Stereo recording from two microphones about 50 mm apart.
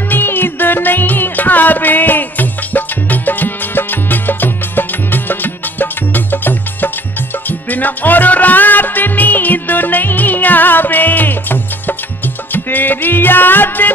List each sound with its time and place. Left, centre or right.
0.1 s music: left